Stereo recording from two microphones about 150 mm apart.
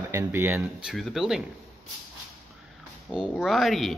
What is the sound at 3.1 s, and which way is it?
Speech, 5° right (ahead or behind).